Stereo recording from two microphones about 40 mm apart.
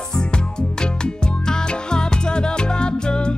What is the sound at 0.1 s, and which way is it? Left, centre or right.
Music, left.